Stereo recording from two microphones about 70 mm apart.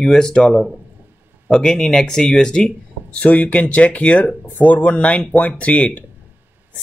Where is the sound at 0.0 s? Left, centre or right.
Centre.